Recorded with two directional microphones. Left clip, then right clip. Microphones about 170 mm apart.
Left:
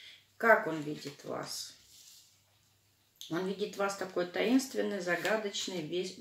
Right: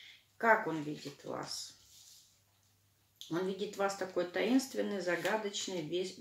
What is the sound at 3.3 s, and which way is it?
Speech, 15° left (ahead or behind).